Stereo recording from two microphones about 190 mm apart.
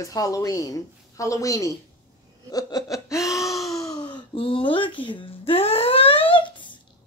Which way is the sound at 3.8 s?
20° left (ahead or behind).